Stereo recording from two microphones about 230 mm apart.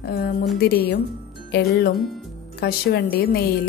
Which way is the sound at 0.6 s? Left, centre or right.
Left.